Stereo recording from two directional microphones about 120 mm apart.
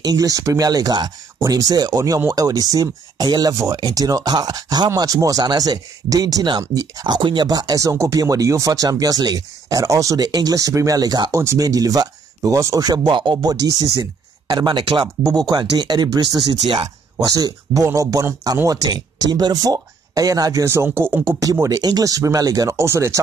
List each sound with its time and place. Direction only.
0.0 s speech: 30° right (ahead or behind)
21.4 s speech: 30° right (ahead or behind)